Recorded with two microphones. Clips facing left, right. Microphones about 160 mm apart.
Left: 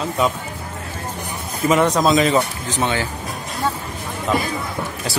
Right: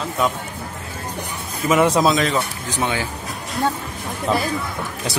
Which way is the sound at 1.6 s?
5° right (ahead or behind).